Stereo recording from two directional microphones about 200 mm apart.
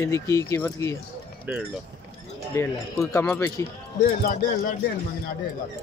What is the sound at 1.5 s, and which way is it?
Speech, 5° right (ahead or behind).